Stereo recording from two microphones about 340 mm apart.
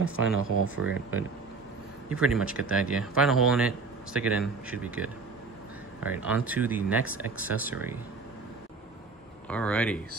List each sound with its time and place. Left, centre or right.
0.4 s speech: right
2.0 s speech: centre
9.5 s speech: centre